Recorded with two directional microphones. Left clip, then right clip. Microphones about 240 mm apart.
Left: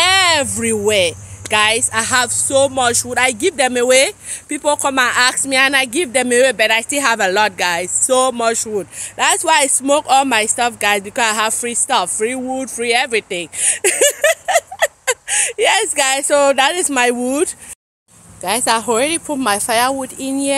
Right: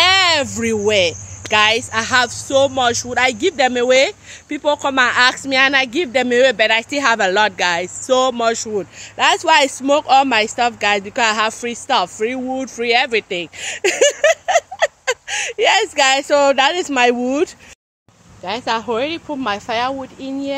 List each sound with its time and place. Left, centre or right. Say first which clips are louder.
0.0 s speech: even; centre
18.4 s speech: left 4 dB; left